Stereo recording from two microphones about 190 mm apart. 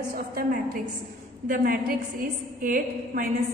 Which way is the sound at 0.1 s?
50° right (ahead or behind).